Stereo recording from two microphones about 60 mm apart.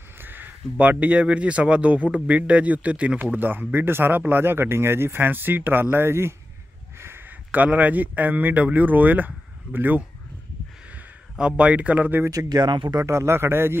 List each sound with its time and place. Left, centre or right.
0.2 s speech: right
3.3 s speech: right
11.3 s speech: centre
12.9 s a man's voice: right